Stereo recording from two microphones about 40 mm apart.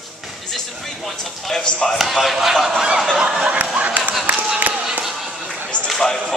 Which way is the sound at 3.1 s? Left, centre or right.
Centre.